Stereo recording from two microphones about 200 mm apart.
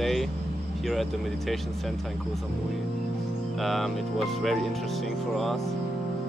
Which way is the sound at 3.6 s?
Centre (ahead or behind).